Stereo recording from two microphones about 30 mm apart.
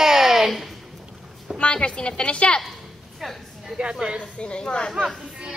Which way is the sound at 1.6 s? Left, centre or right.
Left.